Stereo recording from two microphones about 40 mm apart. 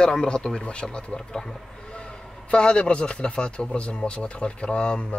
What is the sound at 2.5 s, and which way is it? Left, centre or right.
Speech, left.